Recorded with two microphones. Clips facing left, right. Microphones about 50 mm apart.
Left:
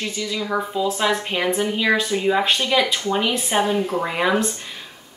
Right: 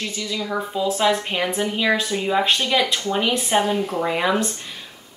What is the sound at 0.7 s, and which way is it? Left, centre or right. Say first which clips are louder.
A woman's voice: right 3 dB; centre.